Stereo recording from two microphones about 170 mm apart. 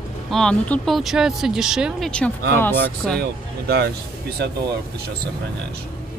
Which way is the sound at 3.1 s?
70° right (ahead or behind).